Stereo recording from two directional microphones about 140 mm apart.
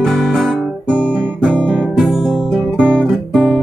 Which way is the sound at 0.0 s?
Centre (ahead or behind).